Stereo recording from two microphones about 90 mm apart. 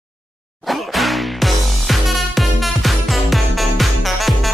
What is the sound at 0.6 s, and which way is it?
Music, centre (ahead or behind).